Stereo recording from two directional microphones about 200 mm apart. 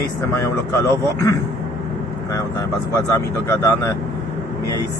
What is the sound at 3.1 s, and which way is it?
Speech, 15° left (ahead or behind).